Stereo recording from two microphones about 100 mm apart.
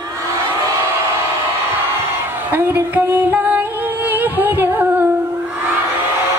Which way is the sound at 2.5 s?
20° right (ahead or behind).